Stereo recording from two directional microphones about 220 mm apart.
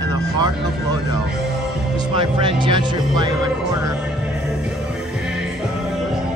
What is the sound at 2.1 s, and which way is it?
Speech, 20° right (ahead or behind).